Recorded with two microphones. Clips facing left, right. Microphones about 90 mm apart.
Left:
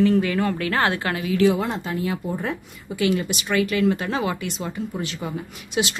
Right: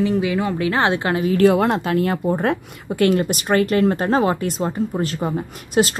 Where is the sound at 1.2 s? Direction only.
50° right (ahead or behind).